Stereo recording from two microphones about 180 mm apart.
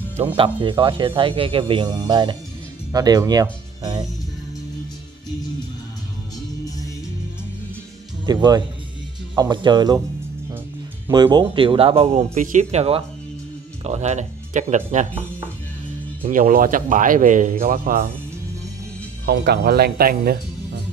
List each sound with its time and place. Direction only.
0.4 s a man's voice: 25° right (ahead or behind)
8.3 s a man's voice: 25° right (ahead or behind)
11.1 s speech: 25° right (ahead or behind); by 15.0 s 40° right (ahead or behind)
16.2 s speech: 45° right (ahead or behind)
19.2 s speech: 65° right (ahead or behind)